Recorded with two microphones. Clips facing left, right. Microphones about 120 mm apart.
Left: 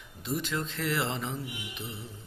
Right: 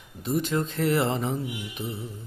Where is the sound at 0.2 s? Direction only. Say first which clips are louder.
Right 6 dB; 50° right (ahead or behind).